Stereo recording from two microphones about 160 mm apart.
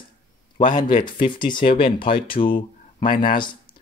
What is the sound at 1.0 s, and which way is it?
Speech, 30° left (ahead or behind).